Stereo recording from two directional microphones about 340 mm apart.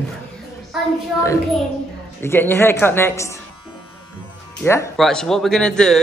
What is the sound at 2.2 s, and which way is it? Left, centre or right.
A woman's voice, centre.